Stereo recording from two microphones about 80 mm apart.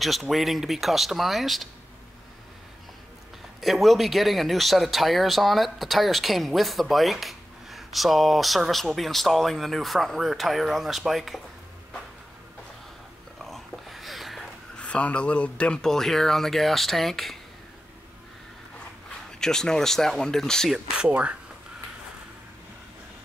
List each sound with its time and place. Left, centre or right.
0.0 s speech: centre
3.6 s speech: centre
13.4 s a sound: centre
14.8 s speech: centre
19.4 s speech: centre
21.1 s speech: centre